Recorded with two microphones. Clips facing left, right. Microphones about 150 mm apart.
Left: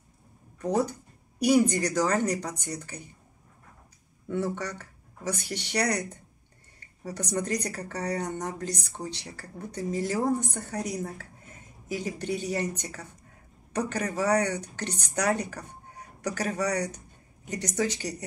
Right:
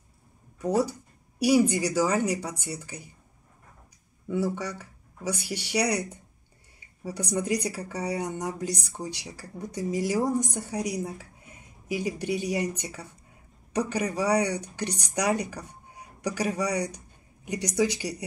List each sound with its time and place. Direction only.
0.6 s speech: 10° right (ahead or behind)
4.3 s speech: 10° right (ahead or behind)